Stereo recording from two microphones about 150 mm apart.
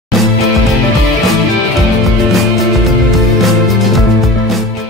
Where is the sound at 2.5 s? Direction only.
Centre (ahead or behind).